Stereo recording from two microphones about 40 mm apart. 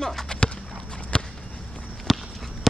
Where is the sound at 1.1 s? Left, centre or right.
Left.